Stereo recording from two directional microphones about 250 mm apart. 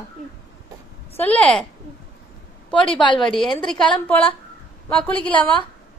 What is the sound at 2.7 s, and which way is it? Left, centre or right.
Speech, centre.